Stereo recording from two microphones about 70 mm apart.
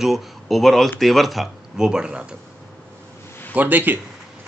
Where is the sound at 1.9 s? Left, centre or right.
Centre.